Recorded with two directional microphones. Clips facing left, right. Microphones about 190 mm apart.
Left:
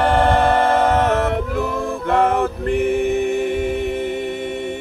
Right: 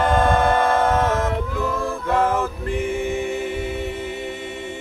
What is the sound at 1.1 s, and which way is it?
Music, 65° left (ahead or behind).